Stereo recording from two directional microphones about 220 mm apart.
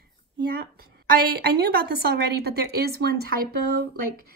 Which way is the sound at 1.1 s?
40° right (ahead or behind).